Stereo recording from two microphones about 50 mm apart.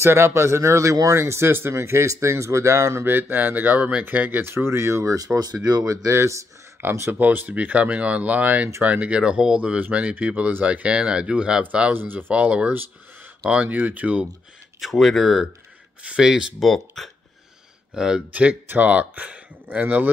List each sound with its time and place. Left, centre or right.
0.0 s speech: right
3.1 s speech: right
4.4 s speech: right
6.8 s speech: right
7.1 s speech: right
11.9 s speech: right
12.3 s speech: right
14.8 s speech: centre
16.5 s speech: centre
17.9 s speech: centre
18.3 s speech: right